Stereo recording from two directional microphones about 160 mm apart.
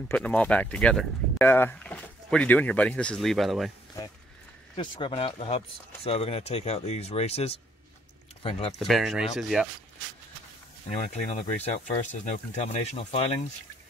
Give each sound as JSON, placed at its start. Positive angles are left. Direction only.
{"t": 0.1, "sound": "speech", "side_deg": 10}
{"t": 4.7, "sound": "speech", "side_deg": 30}
{"t": 8.7, "sound": "speech", "side_deg": 0}
{"t": 11.6, "sound": "speech", "side_deg": 45}